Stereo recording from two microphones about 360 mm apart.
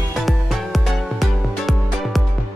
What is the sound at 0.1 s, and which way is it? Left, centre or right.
Music, centre.